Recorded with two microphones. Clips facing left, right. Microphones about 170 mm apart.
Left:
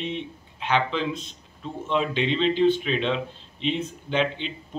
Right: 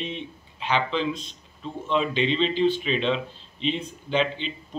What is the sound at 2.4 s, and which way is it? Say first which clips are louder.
Speech: left 4 dB; 55° left (ahead or behind).